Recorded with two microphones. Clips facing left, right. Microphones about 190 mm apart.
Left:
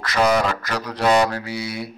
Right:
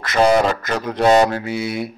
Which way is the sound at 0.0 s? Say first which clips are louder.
Right 4 dB; 25° right (ahead or behind).